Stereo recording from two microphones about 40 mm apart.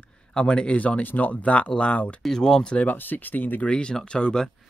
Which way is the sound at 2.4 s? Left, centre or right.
Centre.